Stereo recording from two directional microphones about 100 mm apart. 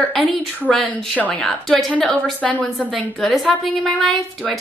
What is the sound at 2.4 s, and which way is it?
Speech, 15° left (ahead or behind).